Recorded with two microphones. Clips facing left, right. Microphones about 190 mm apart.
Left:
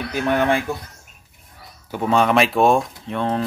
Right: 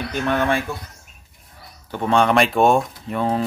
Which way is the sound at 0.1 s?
15° left (ahead or behind).